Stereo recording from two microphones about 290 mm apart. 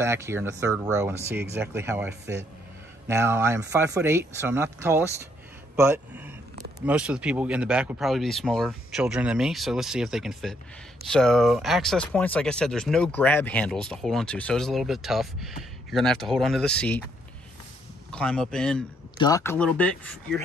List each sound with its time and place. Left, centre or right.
0.0 s a man's voice: centre
18.1 s speech: centre